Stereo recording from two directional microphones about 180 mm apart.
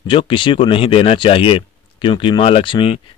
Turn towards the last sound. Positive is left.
turn(degrees=30)  # may be behind; listen again after turning